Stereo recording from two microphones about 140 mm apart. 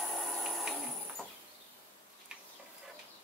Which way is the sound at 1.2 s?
5° left (ahead or behind).